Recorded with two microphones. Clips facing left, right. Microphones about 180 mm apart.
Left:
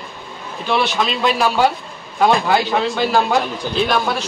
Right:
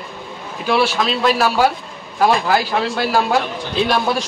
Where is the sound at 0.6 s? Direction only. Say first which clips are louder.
Right 2 dB; 10° right (ahead or behind).